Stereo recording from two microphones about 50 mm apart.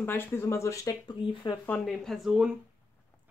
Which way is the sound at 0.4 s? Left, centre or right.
Left.